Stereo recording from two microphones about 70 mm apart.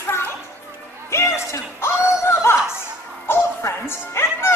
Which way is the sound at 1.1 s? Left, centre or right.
Left.